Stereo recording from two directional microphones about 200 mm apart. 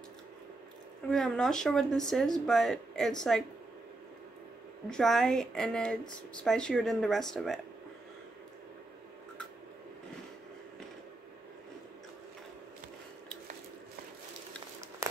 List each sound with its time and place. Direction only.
1.1 s speech: centre (ahead or behind)
4.8 s speech: centre (ahead or behind)